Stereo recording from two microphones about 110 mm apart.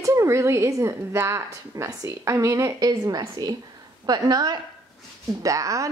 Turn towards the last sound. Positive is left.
turn(degrees=-30)  # may be behind; listen again after turning